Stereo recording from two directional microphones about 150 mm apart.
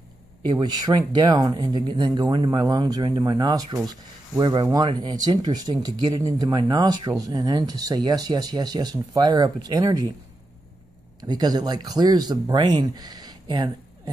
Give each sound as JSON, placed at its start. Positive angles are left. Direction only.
{"t": 0.5, "sound": "speech", "side_deg": -30}
{"t": 11.1, "sound": "speech", "side_deg": -25}